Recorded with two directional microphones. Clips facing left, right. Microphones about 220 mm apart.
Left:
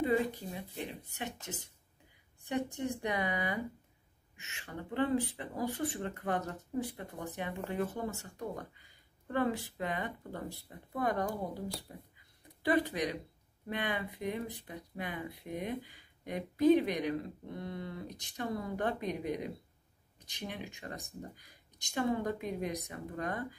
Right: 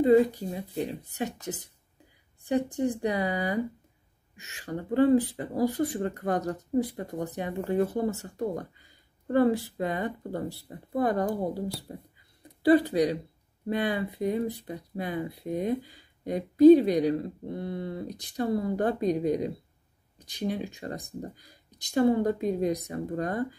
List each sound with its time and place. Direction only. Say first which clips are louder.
0.6 s speech: right 9 dB; 35° right (ahead or behind)